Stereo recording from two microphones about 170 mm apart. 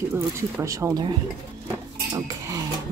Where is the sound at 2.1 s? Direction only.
20° right (ahead or behind).